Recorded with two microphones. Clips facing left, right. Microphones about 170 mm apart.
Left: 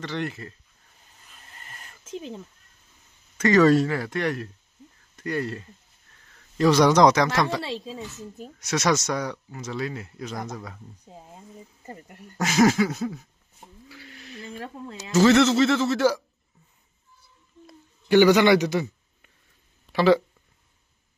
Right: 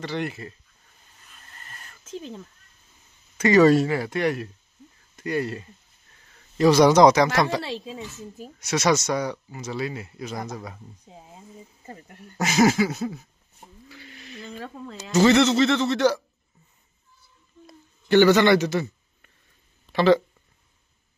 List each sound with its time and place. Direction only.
0.0 s speech: 10° right (ahead or behind)
1.5 s a sound: 15° left (ahead or behind)
3.3 s speech: 10° right (ahead or behind)
8.4 s speech: 5° right (ahead or behind)
11.1 s speech: centre (ahead or behind)
12.4 s a sound: 5° right (ahead or behind)
18.0 s a man's voice: 10° left (ahead or behind)